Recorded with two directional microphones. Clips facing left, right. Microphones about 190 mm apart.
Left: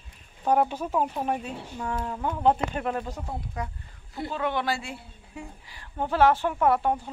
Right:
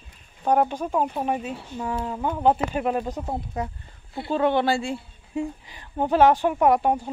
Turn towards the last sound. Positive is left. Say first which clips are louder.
# right 4 dB
turn(degrees=-15)  # may be behind; listen again after turning